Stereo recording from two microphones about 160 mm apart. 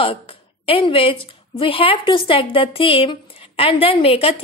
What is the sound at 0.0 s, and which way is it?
A woman's voice, 35° left (ahead or behind).